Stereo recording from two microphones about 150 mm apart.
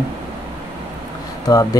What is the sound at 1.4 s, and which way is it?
Speech, 25° left (ahead or behind).